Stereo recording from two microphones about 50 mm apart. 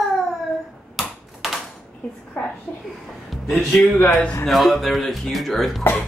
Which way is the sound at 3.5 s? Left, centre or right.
Centre.